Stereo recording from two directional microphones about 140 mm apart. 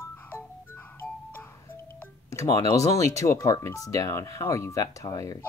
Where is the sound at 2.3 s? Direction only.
25° left (ahead or behind).